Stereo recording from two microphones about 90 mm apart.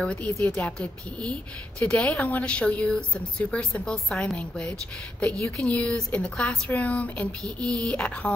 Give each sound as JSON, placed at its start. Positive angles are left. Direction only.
{"t": 0.0, "sound": "a woman's voice", "side_deg": 10}